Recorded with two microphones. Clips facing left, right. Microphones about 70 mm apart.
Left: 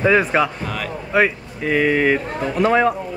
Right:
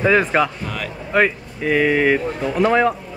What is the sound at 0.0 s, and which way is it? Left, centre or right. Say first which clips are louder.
Speech: even; centre.